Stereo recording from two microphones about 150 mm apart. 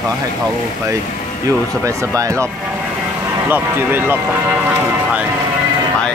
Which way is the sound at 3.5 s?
15° right (ahead or behind).